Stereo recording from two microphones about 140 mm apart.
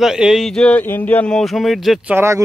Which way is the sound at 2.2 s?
20° right (ahead or behind).